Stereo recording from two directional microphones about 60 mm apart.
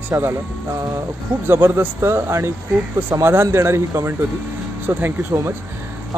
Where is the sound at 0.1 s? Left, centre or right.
Right.